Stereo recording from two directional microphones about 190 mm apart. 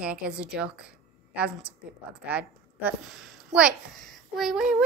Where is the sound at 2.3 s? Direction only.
10° right (ahead or behind).